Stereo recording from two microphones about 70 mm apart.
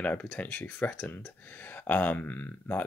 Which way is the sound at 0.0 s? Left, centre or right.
Left.